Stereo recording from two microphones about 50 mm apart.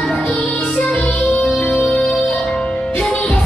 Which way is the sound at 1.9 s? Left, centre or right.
Centre.